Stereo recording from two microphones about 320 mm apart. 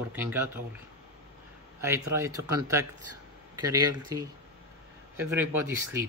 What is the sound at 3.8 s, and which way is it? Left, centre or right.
Speech, right.